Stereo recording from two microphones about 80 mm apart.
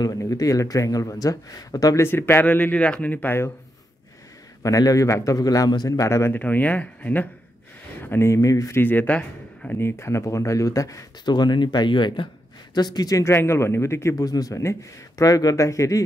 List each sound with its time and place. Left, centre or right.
0.2 s a man's voice: left
2.0 s speech: left
4.6 s a man's voice: left
5.9 s speech: left
6.3 s speech: left
8.0 s speech: left
8.8 s speech: left
9.8 s speech: left
11.2 s speech: left
12.7 s speech: left
13.2 s speech: left
14.1 s a man's voice: left
14.6 s a man's voice: left